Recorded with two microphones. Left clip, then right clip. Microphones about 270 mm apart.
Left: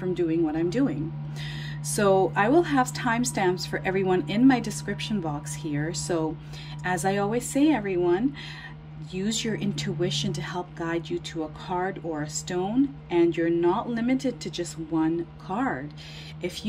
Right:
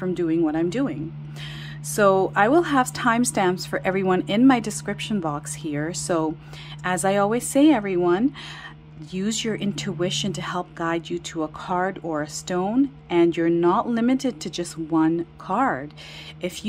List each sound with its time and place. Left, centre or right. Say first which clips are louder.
0.0 s a woman's voice: right 3 dB; centre